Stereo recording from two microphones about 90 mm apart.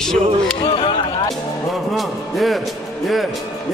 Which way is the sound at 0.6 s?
70° left (ahead or behind).